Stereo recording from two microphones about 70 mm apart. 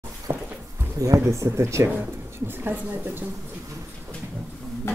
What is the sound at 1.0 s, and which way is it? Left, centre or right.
Speech, right.